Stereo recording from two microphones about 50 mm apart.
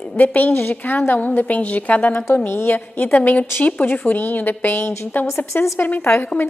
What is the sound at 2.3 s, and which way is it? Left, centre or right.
Speech, left.